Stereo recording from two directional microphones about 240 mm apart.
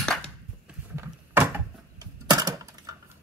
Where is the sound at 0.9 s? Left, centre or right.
Centre.